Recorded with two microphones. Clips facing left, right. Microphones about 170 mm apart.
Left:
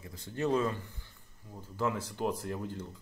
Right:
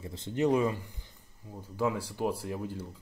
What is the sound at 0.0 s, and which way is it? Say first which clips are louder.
A man's voice: right 5 dB; 25° right (ahead or behind).